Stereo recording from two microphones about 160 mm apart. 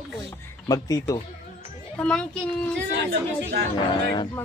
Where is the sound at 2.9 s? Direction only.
90° right.